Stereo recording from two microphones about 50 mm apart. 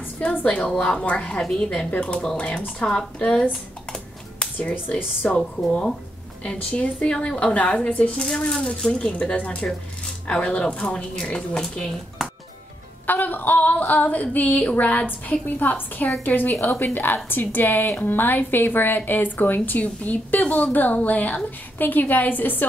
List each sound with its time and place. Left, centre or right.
0.2 s a woman's voice: left
0.7 s a woman's voice: centre
4.6 s a woman's voice: left
5.3 s a woman's voice: left
13.0 s a woman's voice: left
15.0 s a woman's voice: left